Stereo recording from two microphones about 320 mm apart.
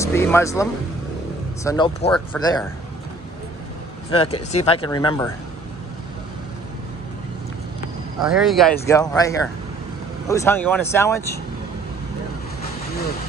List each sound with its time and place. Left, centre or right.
0.0 s speech: centre
4.1 s speech: centre
8.2 s speech: centre